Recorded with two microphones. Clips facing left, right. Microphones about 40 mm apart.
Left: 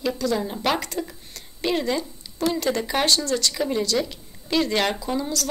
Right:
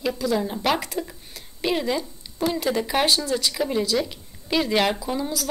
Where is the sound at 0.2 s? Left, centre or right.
Centre.